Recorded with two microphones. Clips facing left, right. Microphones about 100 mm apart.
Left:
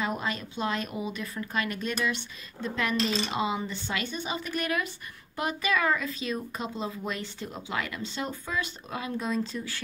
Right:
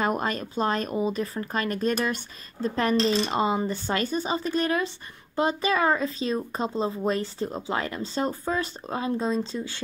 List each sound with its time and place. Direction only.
0.0 s speech: 50° right (ahead or behind); by 9.8 s 25° right (ahead or behind)